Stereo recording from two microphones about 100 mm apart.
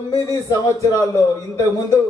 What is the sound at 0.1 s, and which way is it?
Speech, 35° left (ahead or behind).